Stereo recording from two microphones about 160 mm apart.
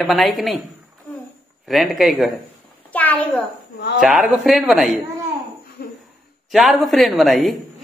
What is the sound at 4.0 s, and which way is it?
Speech, 5° right (ahead or behind).